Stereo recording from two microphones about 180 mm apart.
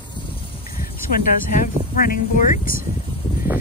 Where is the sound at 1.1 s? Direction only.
50° left (ahead or behind).